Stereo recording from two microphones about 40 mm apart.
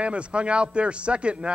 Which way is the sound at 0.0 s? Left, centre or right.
Right.